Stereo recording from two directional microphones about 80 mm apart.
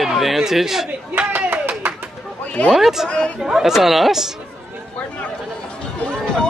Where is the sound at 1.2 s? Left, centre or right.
Right.